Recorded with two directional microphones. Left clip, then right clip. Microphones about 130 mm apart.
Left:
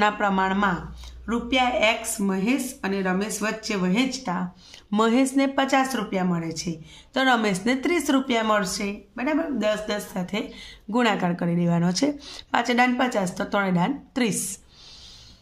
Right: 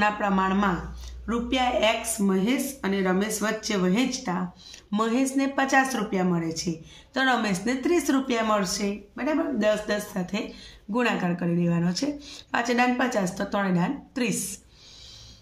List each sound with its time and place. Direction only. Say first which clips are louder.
0.0 s speech: left 2 dB; 35° left (ahead or behind)
4.9 s speech: left 4 dB; 40° left (ahead or behind)
10.9 s speech: left 3 dB; 45° left (ahead or behind)